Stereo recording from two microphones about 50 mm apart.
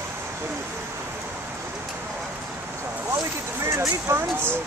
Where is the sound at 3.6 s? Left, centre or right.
Right.